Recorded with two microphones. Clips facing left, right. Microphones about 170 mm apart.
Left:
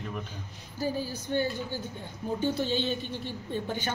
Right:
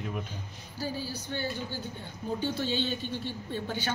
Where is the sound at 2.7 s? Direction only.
40° right (ahead or behind).